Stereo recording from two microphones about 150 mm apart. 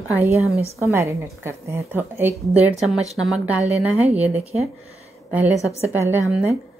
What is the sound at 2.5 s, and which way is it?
A woman's voice, centre (ahead or behind).